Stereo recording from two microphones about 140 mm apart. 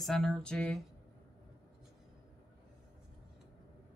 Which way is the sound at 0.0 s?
5° left (ahead or behind).